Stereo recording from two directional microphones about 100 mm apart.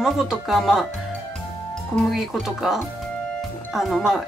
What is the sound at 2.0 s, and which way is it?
Speech, centre (ahead or behind).